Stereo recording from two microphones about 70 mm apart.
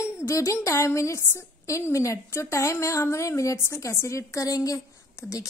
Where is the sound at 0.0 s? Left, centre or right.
Left.